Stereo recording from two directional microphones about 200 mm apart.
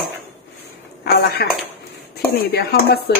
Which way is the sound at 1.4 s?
50° left (ahead or behind).